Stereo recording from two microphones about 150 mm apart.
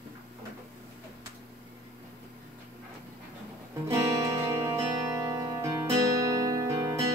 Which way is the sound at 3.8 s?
20° right (ahead or behind).